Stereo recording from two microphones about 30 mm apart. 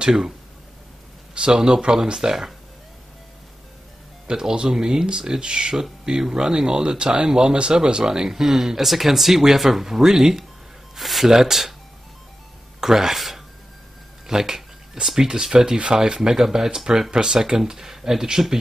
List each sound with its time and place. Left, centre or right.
1.3 s speech: right
4.3 s speech: right
11.0 s speech: centre
11.3 s speech: centre
12.8 s speech: centre
14.2 s speech: centre